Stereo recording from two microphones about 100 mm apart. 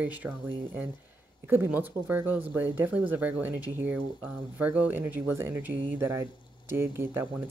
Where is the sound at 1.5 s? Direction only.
20° right (ahead or behind).